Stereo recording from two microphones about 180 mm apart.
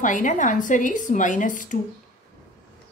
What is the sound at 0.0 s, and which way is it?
A woman's voice, 45° left (ahead or behind).